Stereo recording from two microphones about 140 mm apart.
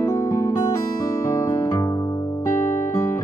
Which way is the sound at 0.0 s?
25° left (ahead or behind).